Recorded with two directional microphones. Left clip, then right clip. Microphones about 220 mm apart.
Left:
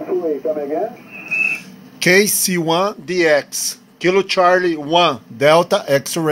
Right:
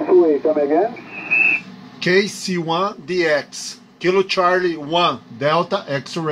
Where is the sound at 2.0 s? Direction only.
30° left (ahead or behind).